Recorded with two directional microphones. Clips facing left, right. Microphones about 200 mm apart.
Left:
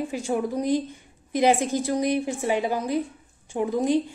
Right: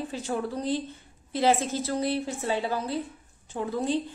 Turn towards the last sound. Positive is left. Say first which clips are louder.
# left 5 dB
turn(degrees=15)  # may be behind; listen again after turning